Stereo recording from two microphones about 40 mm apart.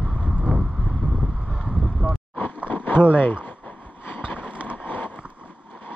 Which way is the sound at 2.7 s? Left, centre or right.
Left.